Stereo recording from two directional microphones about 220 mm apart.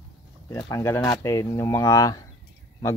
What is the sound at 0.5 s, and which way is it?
Speech, 15° left (ahead or behind).